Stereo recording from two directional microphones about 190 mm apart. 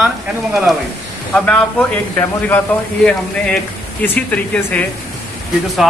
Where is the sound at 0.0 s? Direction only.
Centre (ahead or behind).